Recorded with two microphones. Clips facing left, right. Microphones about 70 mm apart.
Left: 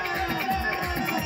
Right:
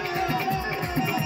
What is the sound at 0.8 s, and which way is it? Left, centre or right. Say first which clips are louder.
Music: right 1 dB; left.